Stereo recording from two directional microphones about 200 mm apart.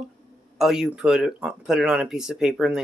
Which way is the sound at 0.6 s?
Centre (ahead or behind).